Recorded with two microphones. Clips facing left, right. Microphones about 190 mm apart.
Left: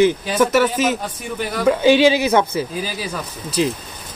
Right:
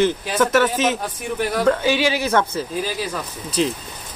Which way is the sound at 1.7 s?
20° left (ahead or behind).